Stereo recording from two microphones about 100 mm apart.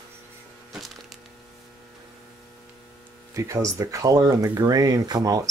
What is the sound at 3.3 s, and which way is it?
Speech, 30° right (ahead or behind).